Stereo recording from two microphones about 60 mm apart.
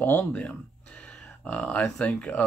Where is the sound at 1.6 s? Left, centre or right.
Left.